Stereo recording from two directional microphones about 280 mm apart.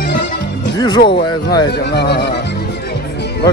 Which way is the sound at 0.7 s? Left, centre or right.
Centre.